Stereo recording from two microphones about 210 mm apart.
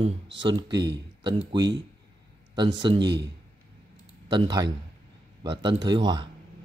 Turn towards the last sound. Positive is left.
turn(degrees=-20)  # may be behind; listen again after turning